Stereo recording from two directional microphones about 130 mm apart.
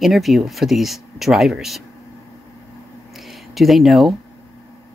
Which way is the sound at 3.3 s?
Centre (ahead or behind).